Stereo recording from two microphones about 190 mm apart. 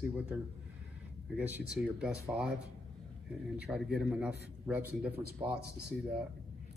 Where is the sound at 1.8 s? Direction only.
5° right (ahead or behind).